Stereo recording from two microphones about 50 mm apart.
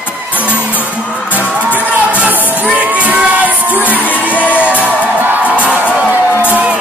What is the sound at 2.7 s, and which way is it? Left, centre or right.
Music, right.